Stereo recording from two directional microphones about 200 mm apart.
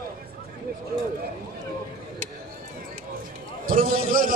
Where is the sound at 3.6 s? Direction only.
45° right (ahead or behind).